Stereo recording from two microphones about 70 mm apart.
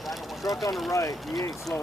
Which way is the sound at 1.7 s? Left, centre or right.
Left.